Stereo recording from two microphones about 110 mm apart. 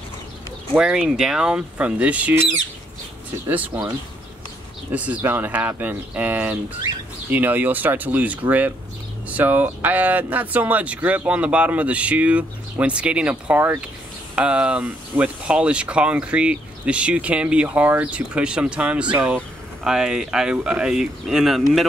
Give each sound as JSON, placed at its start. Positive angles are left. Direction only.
{"t": 0.7, "sound": "speech", "side_deg": -5}
{"t": 3.4, "sound": "speech", "side_deg": -15}
{"t": 4.9, "sound": "speech", "side_deg": -15}